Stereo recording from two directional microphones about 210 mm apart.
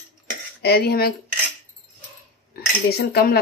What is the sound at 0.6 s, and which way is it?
Speech, 50° left (ahead or behind).